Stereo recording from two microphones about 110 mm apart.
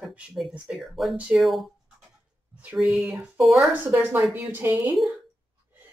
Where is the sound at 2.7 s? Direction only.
5° right (ahead or behind).